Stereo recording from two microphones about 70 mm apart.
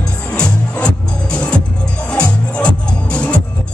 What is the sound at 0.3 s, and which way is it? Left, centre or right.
Music, centre.